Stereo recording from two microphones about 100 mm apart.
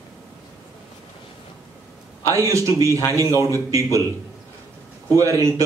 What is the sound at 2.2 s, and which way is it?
Speech, 30° right (ahead or behind).